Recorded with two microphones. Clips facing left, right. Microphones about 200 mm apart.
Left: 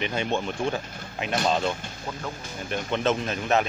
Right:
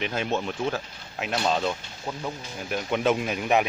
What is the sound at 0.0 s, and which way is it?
Speech, centre (ahead or behind).